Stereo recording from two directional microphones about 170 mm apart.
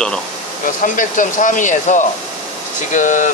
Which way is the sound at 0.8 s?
50° left (ahead or behind).